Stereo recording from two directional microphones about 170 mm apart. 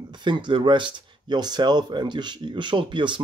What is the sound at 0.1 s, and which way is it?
Speech, 25° right (ahead or behind).